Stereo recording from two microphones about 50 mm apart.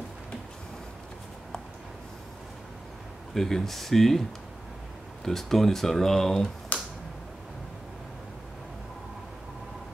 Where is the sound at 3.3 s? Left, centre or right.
Centre.